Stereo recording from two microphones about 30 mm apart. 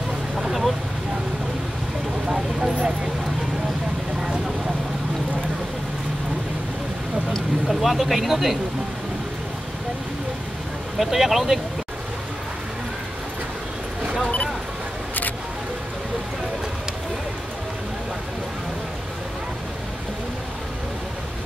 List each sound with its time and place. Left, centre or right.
0.4 s vehicle: centre
2.2 s vehicle: right
7.6 s speech: centre
11.0 s speech: centre